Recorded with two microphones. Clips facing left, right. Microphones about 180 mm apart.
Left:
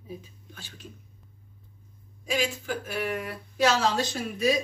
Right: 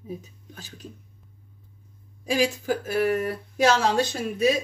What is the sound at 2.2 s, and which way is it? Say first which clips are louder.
Speech: right 5 dB; 35° right (ahead or behind).